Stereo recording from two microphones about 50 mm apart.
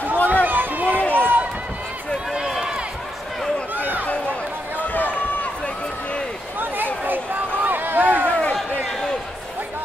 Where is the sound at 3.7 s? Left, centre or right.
Right.